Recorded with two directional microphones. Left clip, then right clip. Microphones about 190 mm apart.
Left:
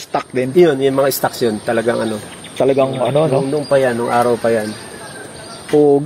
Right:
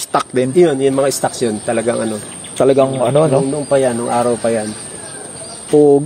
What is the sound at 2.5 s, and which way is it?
Speech, 20° right (ahead or behind).